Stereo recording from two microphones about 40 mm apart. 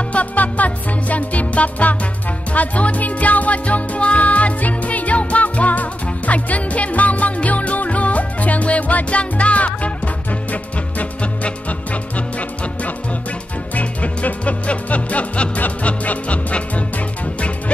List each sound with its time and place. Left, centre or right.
0.1 s music: left
13.7 s music: left